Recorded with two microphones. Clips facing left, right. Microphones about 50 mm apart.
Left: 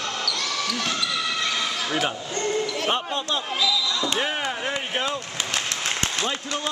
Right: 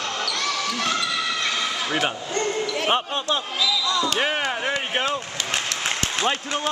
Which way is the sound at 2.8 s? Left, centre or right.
Right.